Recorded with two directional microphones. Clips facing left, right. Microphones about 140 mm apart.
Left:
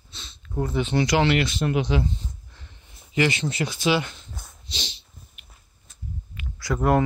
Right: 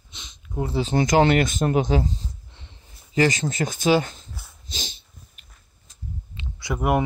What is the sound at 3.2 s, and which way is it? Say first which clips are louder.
Speech: right 2 dB; 40° right (ahead or behind).